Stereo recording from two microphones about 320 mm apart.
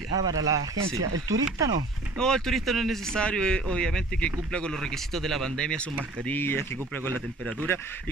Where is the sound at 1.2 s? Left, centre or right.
Centre.